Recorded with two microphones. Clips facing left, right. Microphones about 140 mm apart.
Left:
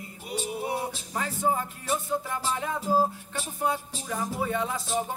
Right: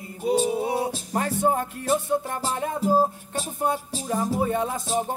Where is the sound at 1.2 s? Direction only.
60° right (ahead or behind).